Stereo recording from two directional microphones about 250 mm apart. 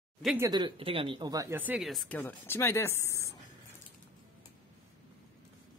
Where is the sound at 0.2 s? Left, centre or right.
Centre.